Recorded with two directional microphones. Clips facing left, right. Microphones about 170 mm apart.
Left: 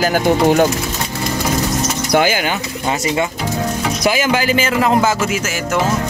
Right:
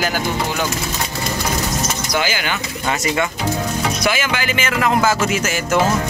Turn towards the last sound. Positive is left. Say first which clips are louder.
# left 2 dB
turn(degrees=30)  # may be behind; listen again after turning